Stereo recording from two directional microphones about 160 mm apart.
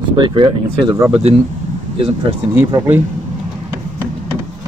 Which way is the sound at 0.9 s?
15° right (ahead or behind).